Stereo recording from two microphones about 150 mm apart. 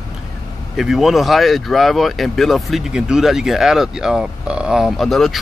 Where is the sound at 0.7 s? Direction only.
Centre (ahead or behind).